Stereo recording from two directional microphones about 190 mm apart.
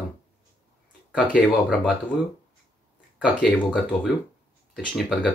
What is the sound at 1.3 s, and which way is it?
Speech, centre (ahead or behind).